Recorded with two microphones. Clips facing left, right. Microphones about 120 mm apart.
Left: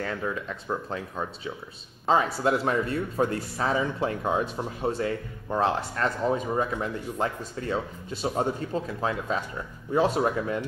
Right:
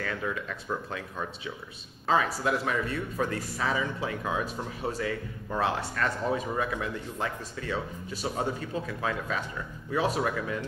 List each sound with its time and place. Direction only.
0.0 s speech: 25° left (ahead or behind)